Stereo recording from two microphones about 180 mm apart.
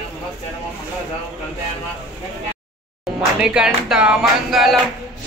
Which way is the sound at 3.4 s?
5° right (ahead or behind).